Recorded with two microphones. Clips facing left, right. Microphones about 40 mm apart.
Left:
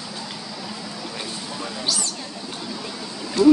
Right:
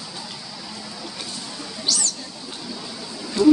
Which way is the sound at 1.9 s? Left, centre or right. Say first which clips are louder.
Right 2 dB; centre.